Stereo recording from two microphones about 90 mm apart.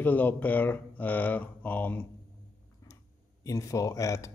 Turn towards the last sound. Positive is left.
turn(degrees=35)  # may be behind; listen again after turning